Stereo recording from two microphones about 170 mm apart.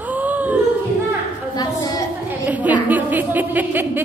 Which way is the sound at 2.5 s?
10° right (ahead or behind).